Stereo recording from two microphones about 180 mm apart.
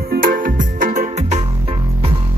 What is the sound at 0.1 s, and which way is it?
Music, 55° right (ahead or behind).